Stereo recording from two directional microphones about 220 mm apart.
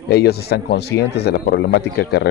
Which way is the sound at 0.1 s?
45° left (ahead or behind).